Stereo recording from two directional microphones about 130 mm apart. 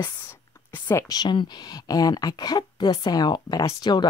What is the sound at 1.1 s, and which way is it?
Speech, 35° left (ahead or behind).